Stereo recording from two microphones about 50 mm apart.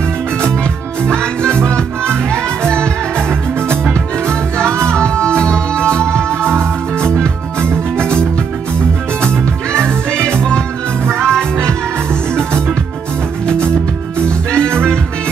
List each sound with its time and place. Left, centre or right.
1.0 s music: centre
4.6 s music: right
4.9 s music: centre
6.1 s music: right
7.0 s music: centre
9.2 s music: centre
11.1 s music: centre